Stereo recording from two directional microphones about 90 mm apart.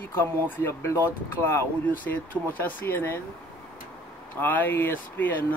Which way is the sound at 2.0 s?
20° left (ahead or behind).